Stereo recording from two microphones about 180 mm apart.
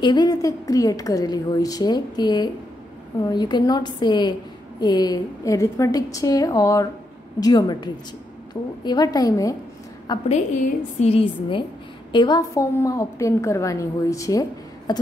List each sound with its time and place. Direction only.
0.0 s a woman's voice: 25° left (ahead or behind)
10.2 s a woman's voice: 40° left (ahead or behind); by 15.0 s 20° left (ahead or behind)